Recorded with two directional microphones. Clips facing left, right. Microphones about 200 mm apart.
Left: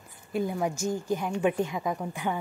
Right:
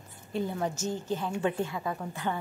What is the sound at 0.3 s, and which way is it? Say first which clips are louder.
Speech: left 3 dB; 10° left (ahead or behind).